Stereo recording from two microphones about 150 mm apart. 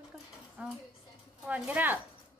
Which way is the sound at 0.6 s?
10° right (ahead or behind).